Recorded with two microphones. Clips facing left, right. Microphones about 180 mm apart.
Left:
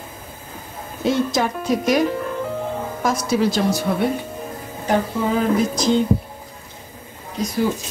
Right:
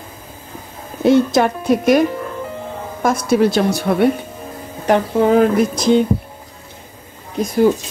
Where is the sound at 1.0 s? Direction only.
60° right (ahead or behind).